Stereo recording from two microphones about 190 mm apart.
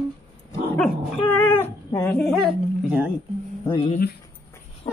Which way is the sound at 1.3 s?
10° left (ahead or behind).